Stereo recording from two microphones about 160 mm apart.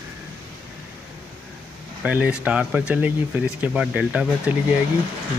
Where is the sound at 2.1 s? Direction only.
10° right (ahead or behind).